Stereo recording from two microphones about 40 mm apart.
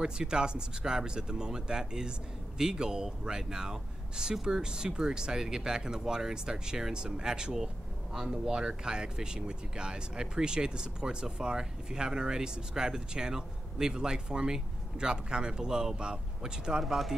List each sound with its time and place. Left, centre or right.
0.0 s speech: centre
16.8 s speech: centre